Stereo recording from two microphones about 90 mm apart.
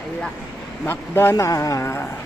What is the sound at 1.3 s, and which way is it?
Speech, 40° left (ahead or behind).